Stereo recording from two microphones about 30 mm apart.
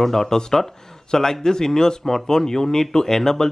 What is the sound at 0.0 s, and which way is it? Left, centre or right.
Speech, centre.